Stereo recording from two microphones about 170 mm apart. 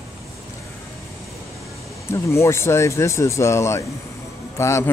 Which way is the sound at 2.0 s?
15° left (ahead or behind).